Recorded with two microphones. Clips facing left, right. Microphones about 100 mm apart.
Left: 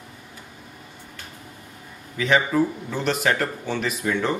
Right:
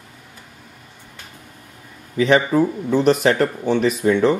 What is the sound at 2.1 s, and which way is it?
A man's voice, 20° right (ahead or behind).